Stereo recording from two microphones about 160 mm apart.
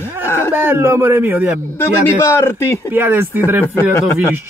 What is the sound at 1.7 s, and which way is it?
A man's voice, 15° left (ahead or behind).